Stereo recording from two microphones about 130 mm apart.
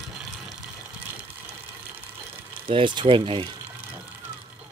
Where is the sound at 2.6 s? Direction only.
40° right (ahead or behind).